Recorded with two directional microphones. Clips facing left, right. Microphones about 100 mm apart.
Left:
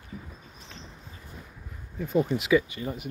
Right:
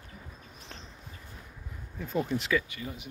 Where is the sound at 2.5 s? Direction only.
20° left (ahead or behind).